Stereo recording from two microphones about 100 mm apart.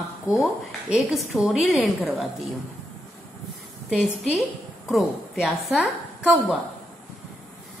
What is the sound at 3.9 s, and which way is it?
A woman's voice, 10° right (ahead or behind).